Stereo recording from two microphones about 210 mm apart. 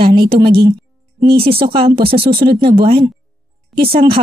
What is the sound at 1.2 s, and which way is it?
Speech, 25° right (ahead or behind).